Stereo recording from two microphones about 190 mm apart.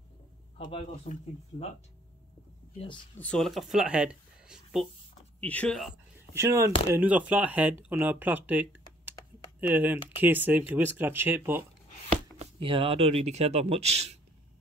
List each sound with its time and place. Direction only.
0.6 s speech: 30° left (ahead or behind)
3.2 s speech: 5° left (ahead or behind)
5.4 s speech: 10° left (ahead or behind)
6.3 s speech: 15° right (ahead or behind)
12.4 s speech: 25° right (ahead or behind)